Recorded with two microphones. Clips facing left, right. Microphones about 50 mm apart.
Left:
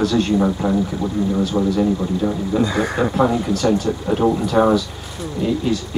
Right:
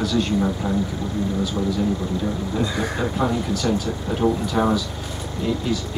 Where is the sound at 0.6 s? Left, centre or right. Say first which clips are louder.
Left 4 dB; centre.